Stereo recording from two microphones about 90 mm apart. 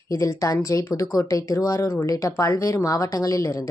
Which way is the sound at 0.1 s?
40° left (ahead or behind).